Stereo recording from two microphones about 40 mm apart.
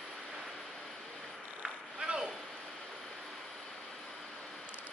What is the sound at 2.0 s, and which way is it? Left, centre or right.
Vehicle, right.